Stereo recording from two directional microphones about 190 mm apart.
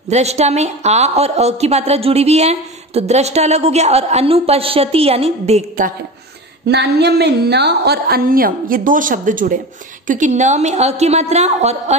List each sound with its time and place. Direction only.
0.1 s a woman's voice: 35° right (ahead or behind)
6.7 s a woman's voice: 60° right (ahead or behind); by 12.0 s 35° right (ahead or behind)